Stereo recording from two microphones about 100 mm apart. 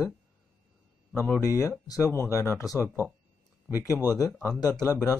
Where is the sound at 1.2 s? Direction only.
25° right (ahead or behind).